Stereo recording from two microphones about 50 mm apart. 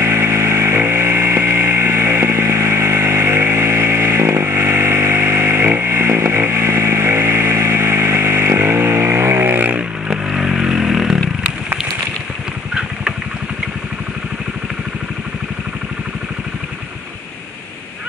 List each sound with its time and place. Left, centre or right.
0.0 s chainsaw: right
9.6 s vehicle: right
10.0 s vehicle: centre